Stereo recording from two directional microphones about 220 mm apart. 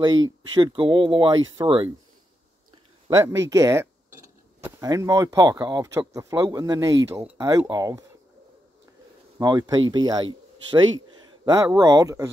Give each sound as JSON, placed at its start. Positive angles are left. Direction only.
{"t": 0.6, "sound": "speech", "side_deg": -20}
{"t": 3.2, "sound": "speech", "side_deg": -15}
{"t": 9.4, "sound": "speech", "side_deg": -20}